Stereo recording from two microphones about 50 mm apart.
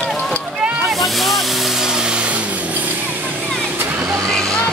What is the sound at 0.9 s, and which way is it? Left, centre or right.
Vehicle, centre.